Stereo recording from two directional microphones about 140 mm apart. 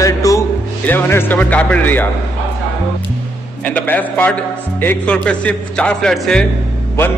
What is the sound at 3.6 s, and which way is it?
Speech, 10° left (ahead or behind).